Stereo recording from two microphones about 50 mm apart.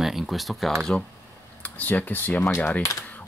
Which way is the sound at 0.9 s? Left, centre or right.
Left.